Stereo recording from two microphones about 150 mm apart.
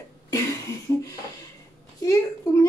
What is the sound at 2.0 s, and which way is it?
Speech, 20° left (ahead or behind).